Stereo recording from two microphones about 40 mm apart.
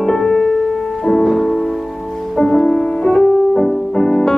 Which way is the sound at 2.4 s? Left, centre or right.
Centre.